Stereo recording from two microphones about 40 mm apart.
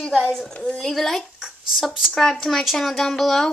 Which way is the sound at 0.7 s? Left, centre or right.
Centre.